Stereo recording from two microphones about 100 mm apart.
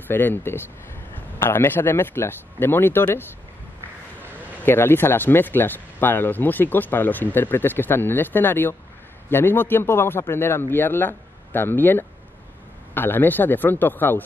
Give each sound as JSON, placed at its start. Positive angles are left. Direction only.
{"t": 0.1, "sound": "speech", "side_deg": 20}